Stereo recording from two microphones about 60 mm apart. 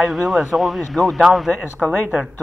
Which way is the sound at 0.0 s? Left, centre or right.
Centre.